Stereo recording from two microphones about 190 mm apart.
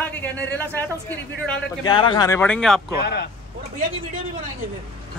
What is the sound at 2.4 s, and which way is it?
Speech, 5° left (ahead or behind).